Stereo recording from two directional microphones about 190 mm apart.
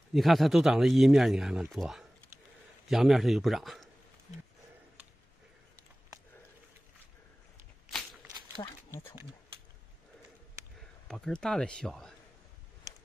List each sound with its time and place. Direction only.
0.1 s speech: centre (ahead or behind)
8.6 s speech: 25° left (ahead or behind)
8.9 s speech: 15° right (ahead or behind)
11.1 s speech: 5° left (ahead or behind)